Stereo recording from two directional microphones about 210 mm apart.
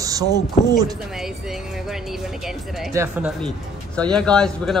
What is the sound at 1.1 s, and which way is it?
A man's voice, centre (ahead or behind).